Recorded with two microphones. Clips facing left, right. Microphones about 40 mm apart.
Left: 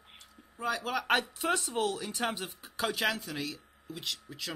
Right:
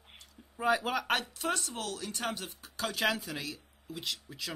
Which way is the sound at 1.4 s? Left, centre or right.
Centre.